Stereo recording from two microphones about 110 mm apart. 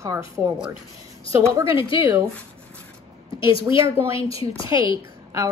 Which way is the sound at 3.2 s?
50° left (ahead or behind).